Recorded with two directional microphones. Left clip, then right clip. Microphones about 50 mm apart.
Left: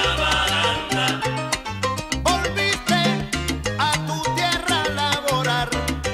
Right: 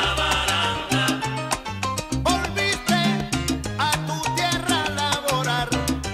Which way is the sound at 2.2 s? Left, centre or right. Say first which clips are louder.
Left 2 dB; right.